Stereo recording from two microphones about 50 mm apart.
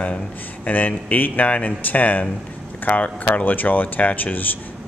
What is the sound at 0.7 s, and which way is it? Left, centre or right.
Speech, left.